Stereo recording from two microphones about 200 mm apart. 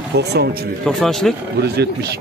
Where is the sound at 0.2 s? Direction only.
55° right (ahead or behind).